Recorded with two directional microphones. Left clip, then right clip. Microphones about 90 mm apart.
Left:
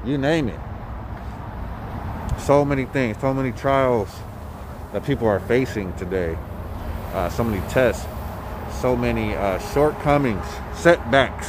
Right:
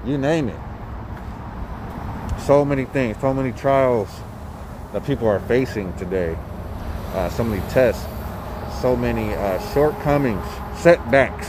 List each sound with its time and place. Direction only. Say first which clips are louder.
0.0 s speech: right 1 dB; 35° left (ahead or behind)
2.4 s speech: right 1 dB; 30° left (ahead or behind)
5.1 s speech: right 1 dB; 75° left (ahead or behind)
5.5 s speech: right 1 dB; 30° left (ahead or behind)
5.8 s speech: right 1 dB; 20° left (ahead or behind)
7.1 s speech: right 1 dB; 30° left (ahead or behind)
10.2 s speech: right 1 dB; 20° left (ahead or behind)